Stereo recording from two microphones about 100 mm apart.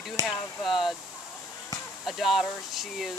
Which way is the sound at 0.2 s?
35° right (ahead or behind).